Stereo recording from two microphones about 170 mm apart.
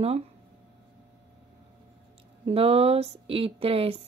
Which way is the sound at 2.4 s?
35° right (ahead or behind).